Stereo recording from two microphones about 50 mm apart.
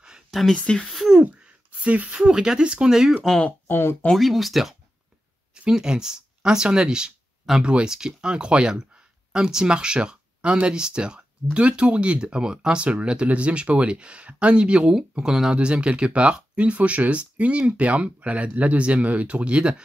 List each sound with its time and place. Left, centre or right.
0.3 s speech: centre
0.6 s speech: left
0.8 s speech: centre
1.4 s a sound: right
2.1 s speech: centre
3.6 s speech: left
4.1 s speech: centre
5.5 s speech: centre
15.5 s speech: right